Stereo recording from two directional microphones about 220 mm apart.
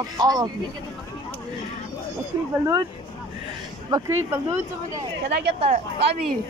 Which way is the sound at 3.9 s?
15° right (ahead or behind).